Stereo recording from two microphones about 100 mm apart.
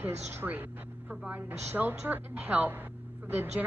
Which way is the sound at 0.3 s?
20° right (ahead or behind).